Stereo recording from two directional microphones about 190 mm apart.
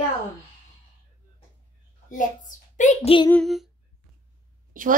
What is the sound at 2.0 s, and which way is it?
A child's voice, 45° left (ahead or behind).